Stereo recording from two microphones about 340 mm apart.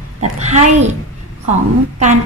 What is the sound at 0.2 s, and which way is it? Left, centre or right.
Speech, centre.